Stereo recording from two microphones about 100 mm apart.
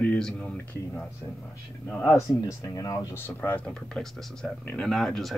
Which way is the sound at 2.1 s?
30° left (ahead or behind).